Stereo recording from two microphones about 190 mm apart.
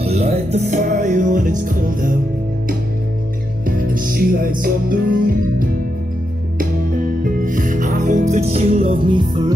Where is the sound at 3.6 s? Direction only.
45° right (ahead or behind).